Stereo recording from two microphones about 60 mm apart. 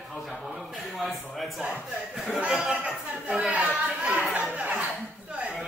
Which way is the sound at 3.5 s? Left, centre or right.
Right.